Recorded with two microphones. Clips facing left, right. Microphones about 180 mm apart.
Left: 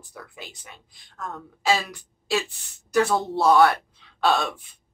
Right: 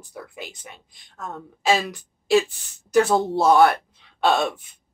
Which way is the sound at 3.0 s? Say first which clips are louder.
Right 2 dB; 25° right (ahead or behind).